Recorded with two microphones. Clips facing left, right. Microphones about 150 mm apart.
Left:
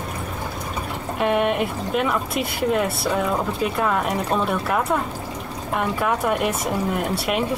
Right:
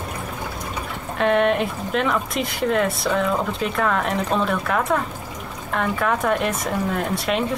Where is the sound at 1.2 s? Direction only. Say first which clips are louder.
Right 2 dB; 5° left (ahead or behind).